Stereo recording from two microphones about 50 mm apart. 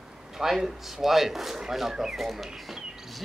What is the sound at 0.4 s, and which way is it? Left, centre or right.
Speech, centre.